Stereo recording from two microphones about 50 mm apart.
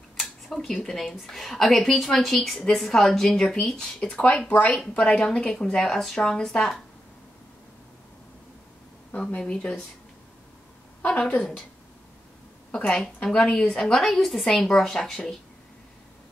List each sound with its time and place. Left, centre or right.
0.2 s cutlery: centre
0.8 s a woman's voice: centre
4.0 s a woman's voice: left
11.0 s a woman's voice: left
12.7 s speech: centre